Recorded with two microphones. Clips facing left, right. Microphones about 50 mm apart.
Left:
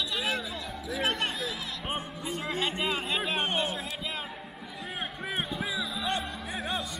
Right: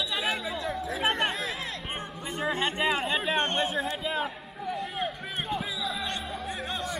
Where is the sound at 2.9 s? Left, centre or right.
Centre.